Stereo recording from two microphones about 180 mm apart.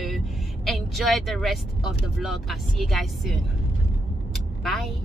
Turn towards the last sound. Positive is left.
turn(degrees=0)  # may be behind; listen again after turning